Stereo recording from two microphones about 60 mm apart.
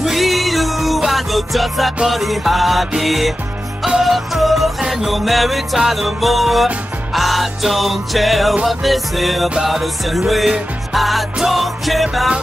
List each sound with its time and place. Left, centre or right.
0.0 s music: centre